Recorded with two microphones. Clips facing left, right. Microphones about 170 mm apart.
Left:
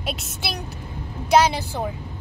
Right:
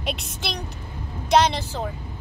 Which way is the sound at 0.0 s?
Centre (ahead or behind).